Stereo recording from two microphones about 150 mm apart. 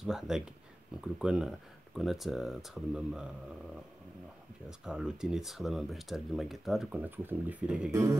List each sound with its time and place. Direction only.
0.0 s speech: centre (ahead or behind)
4.6 s speech: 5° right (ahead or behind)
7.9 s music: 20° right (ahead or behind)